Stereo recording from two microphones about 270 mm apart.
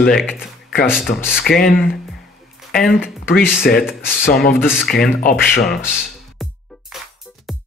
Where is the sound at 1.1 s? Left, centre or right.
Left.